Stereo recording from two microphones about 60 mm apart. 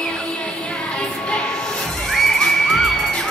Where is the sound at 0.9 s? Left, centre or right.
Centre.